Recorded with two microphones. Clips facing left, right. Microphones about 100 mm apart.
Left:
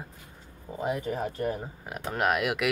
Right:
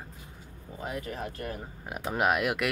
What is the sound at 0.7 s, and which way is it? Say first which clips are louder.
Speech: left 6 dB; 25° left (ahead or behind).